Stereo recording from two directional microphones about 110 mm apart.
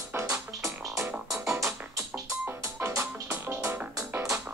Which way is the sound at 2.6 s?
25° right (ahead or behind).